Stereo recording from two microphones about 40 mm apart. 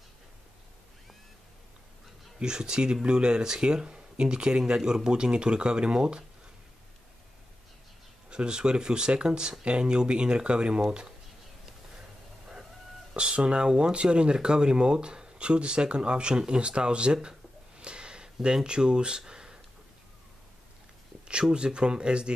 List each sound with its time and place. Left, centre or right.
2.3 s speech: centre
8.3 s speech: right
13.1 s speech: right
21.3 s speech: right